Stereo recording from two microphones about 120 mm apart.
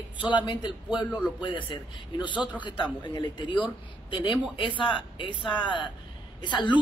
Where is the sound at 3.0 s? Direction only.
40° left (ahead or behind).